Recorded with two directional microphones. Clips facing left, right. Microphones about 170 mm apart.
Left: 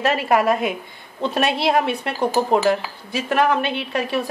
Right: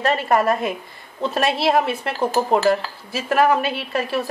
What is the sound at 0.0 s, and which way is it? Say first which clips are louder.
A woman's voice: even; 5° left (ahead or behind).